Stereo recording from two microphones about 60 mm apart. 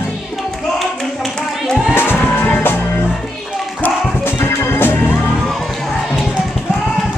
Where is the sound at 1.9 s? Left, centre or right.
Left.